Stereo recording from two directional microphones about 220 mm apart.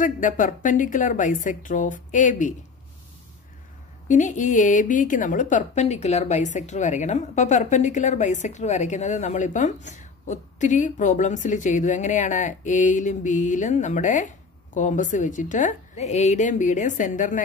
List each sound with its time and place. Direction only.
0.0 s a woman's voice: 35° left (ahead or behind)
4.1 s a woman's voice: 35° left (ahead or behind)